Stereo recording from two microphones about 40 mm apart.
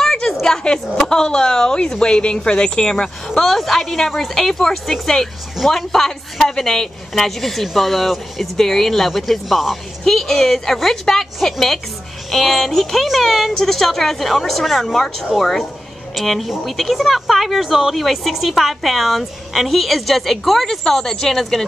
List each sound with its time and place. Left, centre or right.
0.0 s a sound: centre
0.9 s a woman's voice: centre
3.3 s a woman's voice: centre
12.3 s a woman's voice: centre